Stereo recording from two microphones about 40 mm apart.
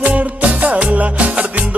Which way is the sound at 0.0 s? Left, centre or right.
Right.